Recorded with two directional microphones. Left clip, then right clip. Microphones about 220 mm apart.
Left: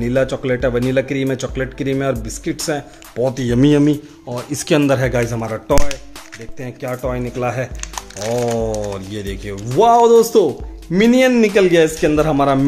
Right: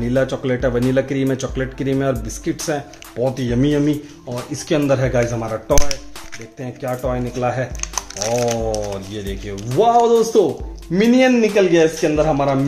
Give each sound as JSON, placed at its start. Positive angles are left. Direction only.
{"t": 0.0, "sound": "speech", "side_deg": 25}
{"t": 2.7, "sound": "speech", "side_deg": 35}
{"t": 7.8, "sound": "speech", "side_deg": -5}
{"t": 8.7, "sound": "a man's voice", "side_deg": 35}